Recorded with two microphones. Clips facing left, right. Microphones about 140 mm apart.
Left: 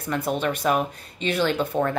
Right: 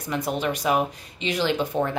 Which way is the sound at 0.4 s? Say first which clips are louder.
Right 1 dB; 15° right (ahead or behind).